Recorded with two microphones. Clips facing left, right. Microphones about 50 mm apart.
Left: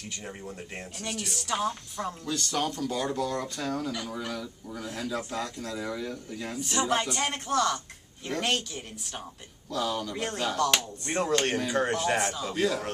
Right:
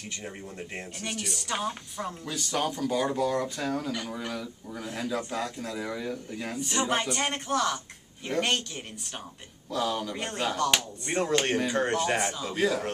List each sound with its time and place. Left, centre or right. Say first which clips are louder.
0.2 s speech: right 1 dB; centre